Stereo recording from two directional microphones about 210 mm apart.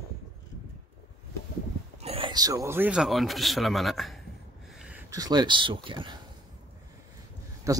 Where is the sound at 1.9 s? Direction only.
30° right (ahead or behind); by 4.2 s centre (ahead or behind).